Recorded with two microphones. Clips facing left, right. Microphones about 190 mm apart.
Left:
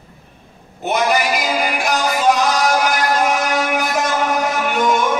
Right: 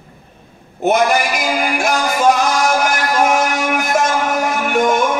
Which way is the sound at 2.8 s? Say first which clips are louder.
Right 1 dB; 50° right (ahead or behind).